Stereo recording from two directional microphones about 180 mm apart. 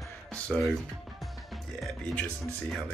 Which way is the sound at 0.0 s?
Centre (ahead or behind).